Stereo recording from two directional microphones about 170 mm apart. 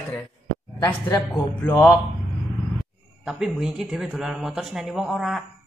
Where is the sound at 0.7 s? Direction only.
25° left (ahead or behind).